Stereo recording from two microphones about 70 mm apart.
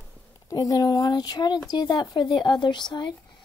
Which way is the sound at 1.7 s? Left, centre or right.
Left.